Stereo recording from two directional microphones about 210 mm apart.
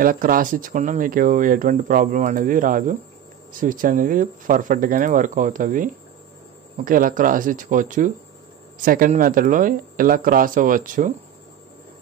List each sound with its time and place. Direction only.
0.0 s speech: 40° right (ahead or behind)